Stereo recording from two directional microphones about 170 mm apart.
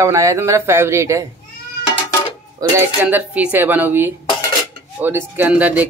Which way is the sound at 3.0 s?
10° right (ahead or behind).